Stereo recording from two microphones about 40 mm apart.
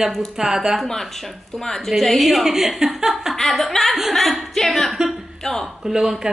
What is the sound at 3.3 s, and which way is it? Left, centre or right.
A woman's voice, centre.